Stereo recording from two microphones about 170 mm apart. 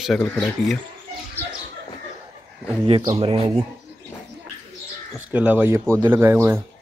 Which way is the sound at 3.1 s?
35° right (ahead or behind).